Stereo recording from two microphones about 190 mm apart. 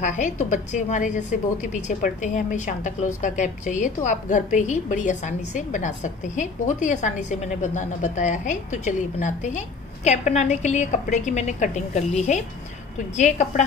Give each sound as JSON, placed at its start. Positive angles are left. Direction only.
{"t": 0.0, "sound": "a woman's voice", "side_deg": 40}